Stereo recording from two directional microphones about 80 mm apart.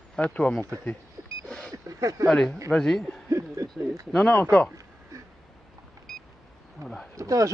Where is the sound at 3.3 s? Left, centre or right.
Right.